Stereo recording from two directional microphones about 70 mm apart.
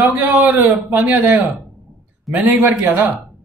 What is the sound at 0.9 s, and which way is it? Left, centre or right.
Speech, right.